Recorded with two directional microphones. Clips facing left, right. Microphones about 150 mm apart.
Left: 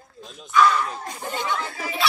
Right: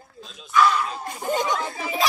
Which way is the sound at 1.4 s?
15° right (ahead or behind).